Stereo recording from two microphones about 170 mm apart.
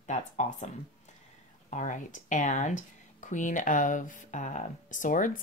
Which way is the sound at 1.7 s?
45° left (ahead or behind).